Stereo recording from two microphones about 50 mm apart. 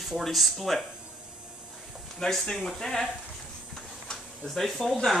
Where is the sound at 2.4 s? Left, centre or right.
Centre.